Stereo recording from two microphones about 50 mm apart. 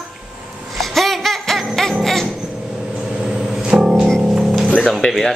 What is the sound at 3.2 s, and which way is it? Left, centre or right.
Music, centre.